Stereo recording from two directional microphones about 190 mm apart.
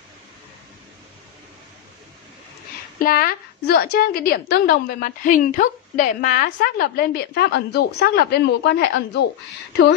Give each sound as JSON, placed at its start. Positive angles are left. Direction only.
{"t": 3.0, "sound": "a woman's voice", "side_deg": 50}
{"t": 6.8, "sound": "a woman's voice", "side_deg": 55}